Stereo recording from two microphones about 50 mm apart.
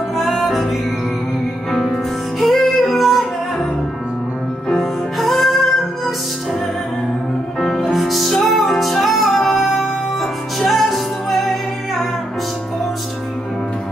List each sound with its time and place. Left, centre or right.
0.1 s music: centre
1.7 s music: centre
4.6 s music: centre
7.6 s music: centre